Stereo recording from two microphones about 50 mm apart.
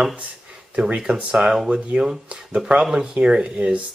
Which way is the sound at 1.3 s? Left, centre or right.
Centre.